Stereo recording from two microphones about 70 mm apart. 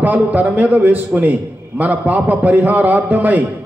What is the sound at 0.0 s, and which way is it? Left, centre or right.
A man's voice, right.